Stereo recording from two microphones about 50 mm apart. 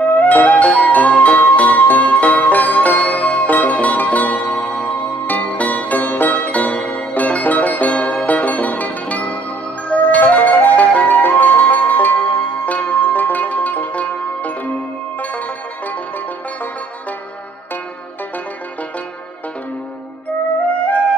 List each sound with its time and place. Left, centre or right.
0.2 s music: left
5.2 s zither: left
9.8 s music: left
11.1 s music: left